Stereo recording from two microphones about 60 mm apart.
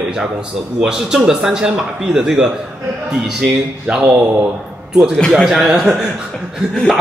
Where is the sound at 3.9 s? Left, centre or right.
Centre.